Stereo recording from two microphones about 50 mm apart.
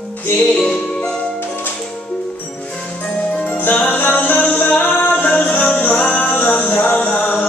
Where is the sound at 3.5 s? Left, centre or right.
Left.